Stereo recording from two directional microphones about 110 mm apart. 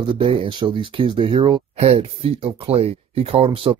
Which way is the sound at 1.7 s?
70° right (ahead or behind).